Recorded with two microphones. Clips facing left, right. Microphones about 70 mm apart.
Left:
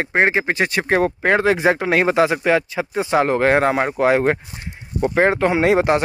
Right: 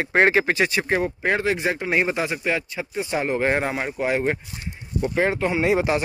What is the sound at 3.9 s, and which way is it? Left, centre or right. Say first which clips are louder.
Speech: left 5 dB; left.